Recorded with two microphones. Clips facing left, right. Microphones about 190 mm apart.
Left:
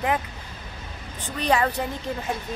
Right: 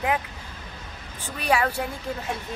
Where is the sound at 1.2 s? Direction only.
10° right (ahead or behind).